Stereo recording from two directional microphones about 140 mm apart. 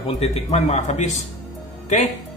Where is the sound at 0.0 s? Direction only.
45° left (ahead or behind).